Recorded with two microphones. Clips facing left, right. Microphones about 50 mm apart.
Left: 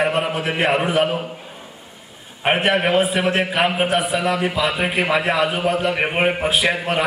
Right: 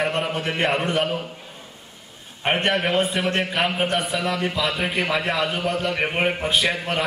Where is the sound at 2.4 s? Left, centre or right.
Centre.